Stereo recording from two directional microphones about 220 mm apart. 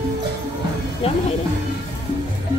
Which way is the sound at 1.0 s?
25° left (ahead or behind).